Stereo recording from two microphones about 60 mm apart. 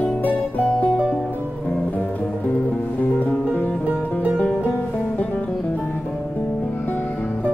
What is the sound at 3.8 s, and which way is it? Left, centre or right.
Music, right.